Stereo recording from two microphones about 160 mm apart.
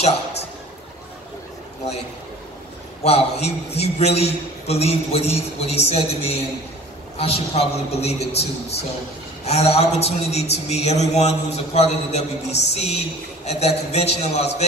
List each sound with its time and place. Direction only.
3.0 s a man's voice: 40° left (ahead or behind)